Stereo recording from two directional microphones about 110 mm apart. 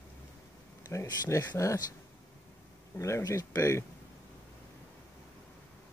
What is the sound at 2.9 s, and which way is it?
Speech, 25° left (ahead or behind).